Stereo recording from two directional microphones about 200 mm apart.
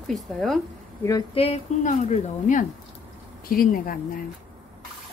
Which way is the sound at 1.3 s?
30° left (ahead or behind).